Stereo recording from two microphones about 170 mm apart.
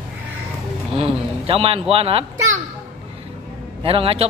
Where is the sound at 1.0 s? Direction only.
35° right (ahead or behind).